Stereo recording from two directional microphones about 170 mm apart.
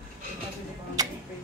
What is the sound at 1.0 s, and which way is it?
Tick-tock, 20° right (ahead or behind).